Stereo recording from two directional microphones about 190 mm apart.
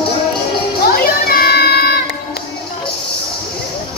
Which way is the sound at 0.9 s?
50° left (ahead or behind).